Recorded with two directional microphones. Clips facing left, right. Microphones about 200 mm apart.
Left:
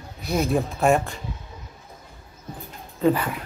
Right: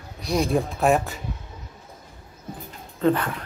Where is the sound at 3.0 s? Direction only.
10° left (ahead or behind).